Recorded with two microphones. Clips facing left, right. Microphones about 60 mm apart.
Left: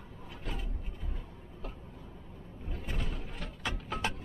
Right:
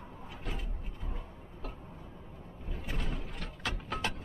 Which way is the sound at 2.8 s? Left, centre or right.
Centre.